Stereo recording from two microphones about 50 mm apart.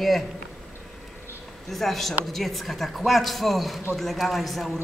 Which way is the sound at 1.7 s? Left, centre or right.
Centre.